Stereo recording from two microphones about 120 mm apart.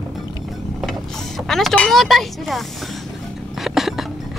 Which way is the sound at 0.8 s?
Centre (ahead or behind).